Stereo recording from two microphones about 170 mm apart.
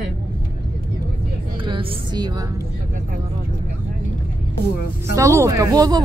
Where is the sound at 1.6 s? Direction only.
30° right (ahead or behind).